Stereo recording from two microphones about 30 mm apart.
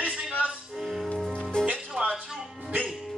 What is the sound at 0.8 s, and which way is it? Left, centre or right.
Music, centre.